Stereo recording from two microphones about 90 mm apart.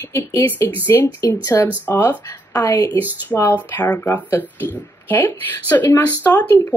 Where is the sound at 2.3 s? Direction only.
45° left (ahead or behind).